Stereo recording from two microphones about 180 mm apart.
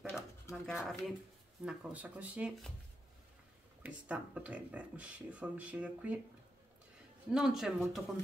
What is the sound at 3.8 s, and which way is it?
Speech, 5° right (ahead or behind).